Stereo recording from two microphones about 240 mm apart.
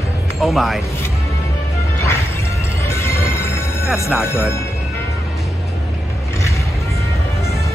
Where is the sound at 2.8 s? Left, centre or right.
Centre.